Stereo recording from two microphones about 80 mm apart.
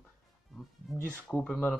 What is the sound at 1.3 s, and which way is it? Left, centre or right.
Speech, centre.